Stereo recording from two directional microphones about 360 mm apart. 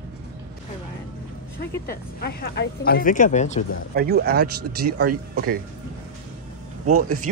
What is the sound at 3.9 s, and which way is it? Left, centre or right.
Speech, right.